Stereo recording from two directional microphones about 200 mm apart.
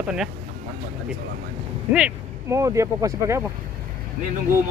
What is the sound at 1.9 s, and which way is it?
Speech, 10° right (ahead or behind).